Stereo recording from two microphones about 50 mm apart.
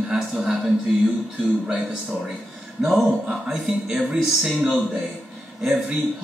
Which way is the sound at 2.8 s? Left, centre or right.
Centre.